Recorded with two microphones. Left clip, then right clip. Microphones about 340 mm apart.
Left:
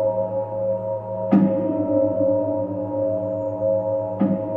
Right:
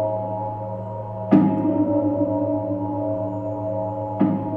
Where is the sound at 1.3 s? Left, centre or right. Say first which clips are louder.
Right 3 dB; right.